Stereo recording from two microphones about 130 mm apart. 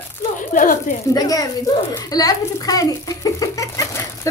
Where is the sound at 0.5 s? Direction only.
90° left.